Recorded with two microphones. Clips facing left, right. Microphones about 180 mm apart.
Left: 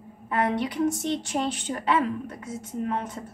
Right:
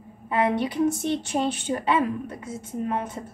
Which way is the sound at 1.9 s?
10° right (ahead or behind).